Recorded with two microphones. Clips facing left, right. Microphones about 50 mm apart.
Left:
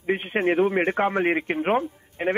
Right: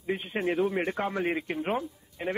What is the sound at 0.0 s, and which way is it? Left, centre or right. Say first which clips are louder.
A man's voice: left 7 dB; left.